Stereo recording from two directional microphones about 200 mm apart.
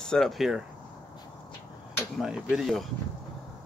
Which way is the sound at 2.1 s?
Centre (ahead or behind).